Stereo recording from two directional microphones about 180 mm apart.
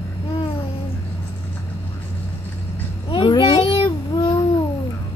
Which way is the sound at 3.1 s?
25° left (ahead or behind).